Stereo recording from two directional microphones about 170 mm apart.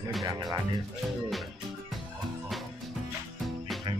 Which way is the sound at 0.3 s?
20° right (ahead or behind).